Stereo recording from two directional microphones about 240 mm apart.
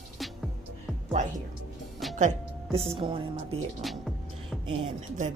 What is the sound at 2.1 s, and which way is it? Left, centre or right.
Speech, right.